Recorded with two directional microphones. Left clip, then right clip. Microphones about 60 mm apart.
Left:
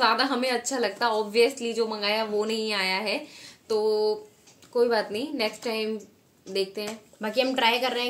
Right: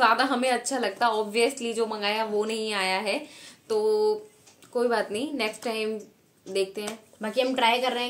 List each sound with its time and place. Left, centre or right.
0.0 s a woman's voice: right
7.2 s a woman's voice: left